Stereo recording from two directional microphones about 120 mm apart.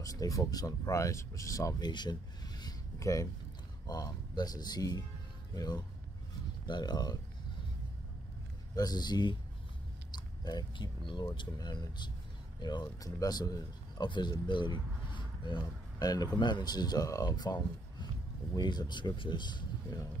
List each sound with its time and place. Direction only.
0.0 s speech: 30° left (ahead or behind)
6.7 s speech: 35° left (ahead or behind)
8.7 s speech: 35° left (ahead or behind)